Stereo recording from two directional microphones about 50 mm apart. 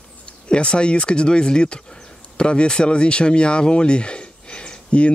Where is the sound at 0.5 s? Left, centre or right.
Centre.